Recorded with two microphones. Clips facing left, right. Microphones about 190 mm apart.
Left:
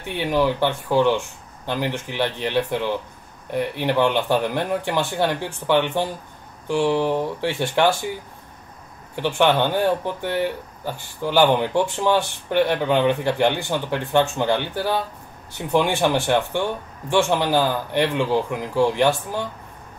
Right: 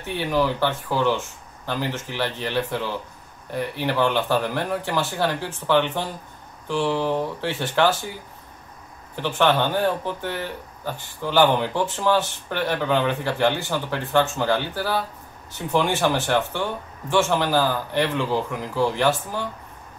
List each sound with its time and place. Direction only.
0.1 s speech: 15° left (ahead or behind)
9.1 s speech: 15° left (ahead or behind)